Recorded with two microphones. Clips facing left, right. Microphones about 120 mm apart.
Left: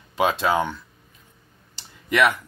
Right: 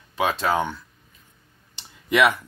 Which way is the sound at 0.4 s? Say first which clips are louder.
Left 1 dB; 5° left (ahead or behind).